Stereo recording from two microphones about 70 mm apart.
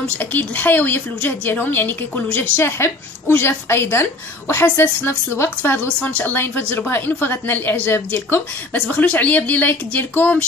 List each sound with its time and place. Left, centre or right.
0.2 s a woman's voice: left
5.9 s a woman's voice: centre
8.7 s a woman's voice: centre